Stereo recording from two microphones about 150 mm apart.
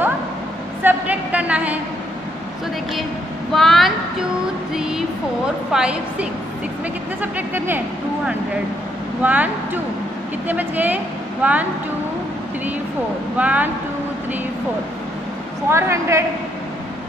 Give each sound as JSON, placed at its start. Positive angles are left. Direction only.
{"t": 0.8, "sound": "a sound", "side_deg": -10}
{"t": 3.5, "sound": "a woman's voice", "side_deg": 0}
{"t": 9.2, "sound": "speech", "side_deg": -10}
{"t": 10.5, "sound": "speech", "side_deg": -10}
{"t": 13.4, "sound": "speech", "side_deg": -10}
{"t": 15.7, "sound": "a woman's voice", "side_deg": -20}